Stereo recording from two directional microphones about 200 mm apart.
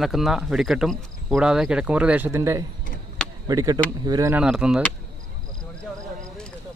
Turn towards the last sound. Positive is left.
turn(degrees=-5)  # may be behind; listen again after turning